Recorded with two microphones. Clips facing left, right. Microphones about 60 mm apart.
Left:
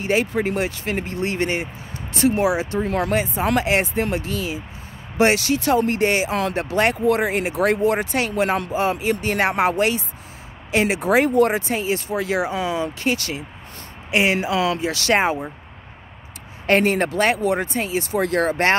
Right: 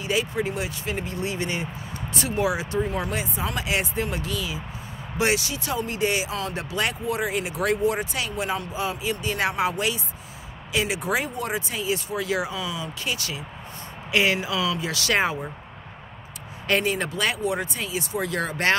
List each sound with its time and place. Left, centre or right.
0.0 s speech: left
2.4 s speech: left
2.9 s speech: left
9.4 s speech: left
14.1 s speech: left
16.6 s speech: left